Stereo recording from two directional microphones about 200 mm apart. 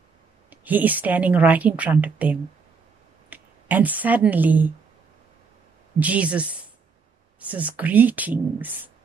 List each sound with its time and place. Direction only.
0.5 s a woman's voice: 10° right (ahead or behind)
5.9 s a woman's voice: 5° right (ahead or behind)